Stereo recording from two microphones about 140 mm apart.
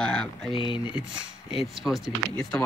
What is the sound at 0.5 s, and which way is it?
Speech, 35° left (ahead or behind).